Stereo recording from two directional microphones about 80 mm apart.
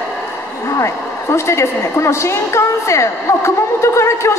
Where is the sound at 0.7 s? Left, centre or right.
Left.